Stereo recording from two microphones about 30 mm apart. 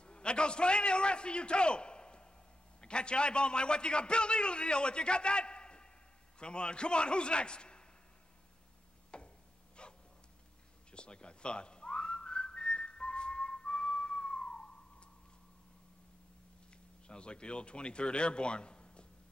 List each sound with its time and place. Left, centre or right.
0.0 s a man's voice: left
9.1 s a sound: left
10.9 s whistling: left
16.7 s speech: left